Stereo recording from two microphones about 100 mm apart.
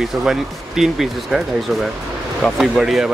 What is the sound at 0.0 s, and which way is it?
Speech, 5° right (ahead or behind).